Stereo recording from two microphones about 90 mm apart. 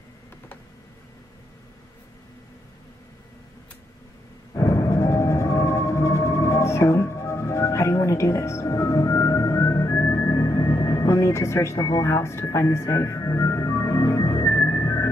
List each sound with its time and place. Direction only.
4.6 s music: 30° left (ahead or behind)